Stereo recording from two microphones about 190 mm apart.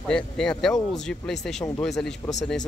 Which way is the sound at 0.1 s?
5° left (ahead or behind).